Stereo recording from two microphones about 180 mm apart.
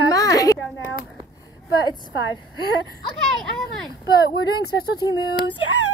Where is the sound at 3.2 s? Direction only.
Centre (ahead or behind).